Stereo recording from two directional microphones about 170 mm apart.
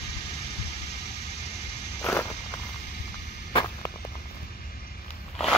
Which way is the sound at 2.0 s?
15° left (ahead or behind).